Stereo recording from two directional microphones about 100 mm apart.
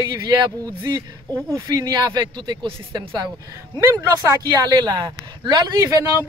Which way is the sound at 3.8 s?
30° right (ahead or behind).